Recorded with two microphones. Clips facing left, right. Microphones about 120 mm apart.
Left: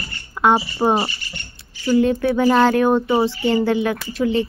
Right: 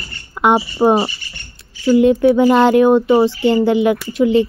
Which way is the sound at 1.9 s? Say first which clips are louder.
Right 6 dB; 25° right (ahead or behind).